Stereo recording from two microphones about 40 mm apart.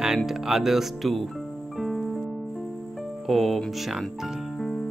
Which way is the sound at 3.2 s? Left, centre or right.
Centre.